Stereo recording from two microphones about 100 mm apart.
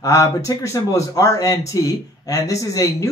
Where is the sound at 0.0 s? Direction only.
30° left (ahead or behind).